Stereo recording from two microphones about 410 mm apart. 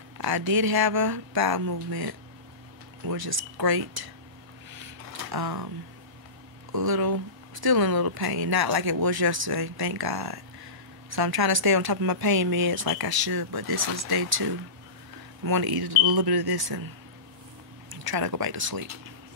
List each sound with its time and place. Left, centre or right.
0.2 s speech: right
4.7 s a sound: right
6.7 s speech: right
18.0 s speech: right